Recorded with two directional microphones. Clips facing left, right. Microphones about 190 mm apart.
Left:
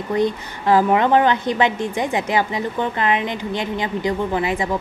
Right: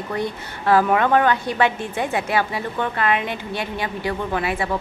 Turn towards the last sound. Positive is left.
turn(degrees=15)  # may be behind; listen again after turning